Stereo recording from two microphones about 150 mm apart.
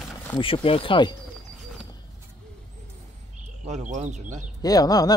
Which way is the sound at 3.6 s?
55° right (ahead or behind).